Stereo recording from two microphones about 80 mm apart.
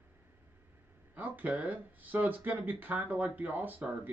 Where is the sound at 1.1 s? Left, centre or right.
Right.